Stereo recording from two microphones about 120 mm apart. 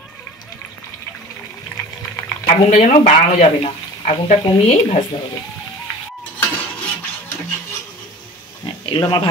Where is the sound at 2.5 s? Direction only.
80° left; by 5.2 s 55° left (ahead or behind).